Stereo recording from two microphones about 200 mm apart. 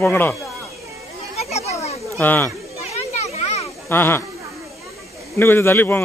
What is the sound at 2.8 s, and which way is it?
Children playing, 35° left (ahead or behind).